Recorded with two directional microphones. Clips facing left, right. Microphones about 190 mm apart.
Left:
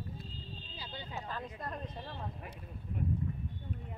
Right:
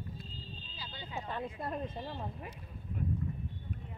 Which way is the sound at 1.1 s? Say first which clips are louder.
Right 4 dB; 15° right (ahead or behind).